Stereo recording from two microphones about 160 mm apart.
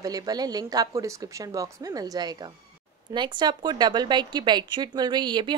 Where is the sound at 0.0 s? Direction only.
25° right (ahead or behind).